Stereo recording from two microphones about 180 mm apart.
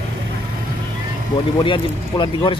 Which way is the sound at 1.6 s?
25° left (ahead or behind).